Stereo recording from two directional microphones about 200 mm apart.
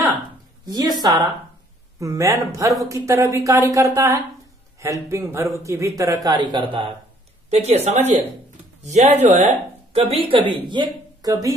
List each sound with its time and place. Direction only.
0.7 s a woman's voice: 20° right (ahead or behind)
2.0 s a man's voice: 15° right (ahead or behind)